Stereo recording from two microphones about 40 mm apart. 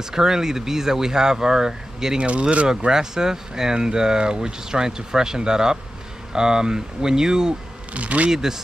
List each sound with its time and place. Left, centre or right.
0.0 s speech: centre
2.1 s speech: right
2.9 s speech: centre
7.9 s speech: right
8.3 s speech: centre